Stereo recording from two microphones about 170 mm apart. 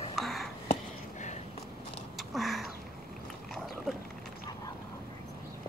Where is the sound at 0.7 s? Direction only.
45° left (ahead or behind).